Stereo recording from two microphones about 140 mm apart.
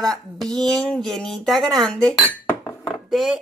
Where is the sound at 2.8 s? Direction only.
Centre (ahead or behind).